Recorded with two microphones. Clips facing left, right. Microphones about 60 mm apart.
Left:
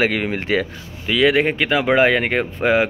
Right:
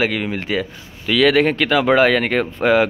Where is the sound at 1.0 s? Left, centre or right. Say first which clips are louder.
Right 2 dB; centre.